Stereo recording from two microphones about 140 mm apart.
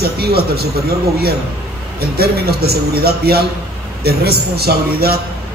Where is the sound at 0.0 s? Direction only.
90° right.